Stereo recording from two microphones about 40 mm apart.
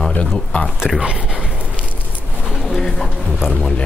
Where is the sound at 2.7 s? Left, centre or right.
Centre.